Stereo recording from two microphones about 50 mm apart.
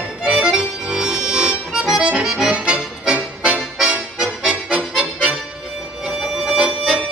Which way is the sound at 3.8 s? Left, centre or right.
Right.